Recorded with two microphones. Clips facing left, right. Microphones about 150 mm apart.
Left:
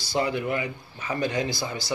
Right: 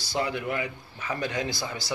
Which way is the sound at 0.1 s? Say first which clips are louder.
Left 3 dB; centre (ahead or behind).